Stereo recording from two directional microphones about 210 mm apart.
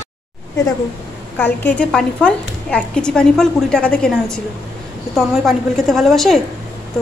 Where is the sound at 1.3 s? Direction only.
10° left (ahead or behind).